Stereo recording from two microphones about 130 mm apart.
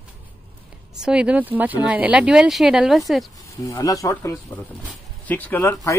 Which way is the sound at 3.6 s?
25° left (ahead or behind).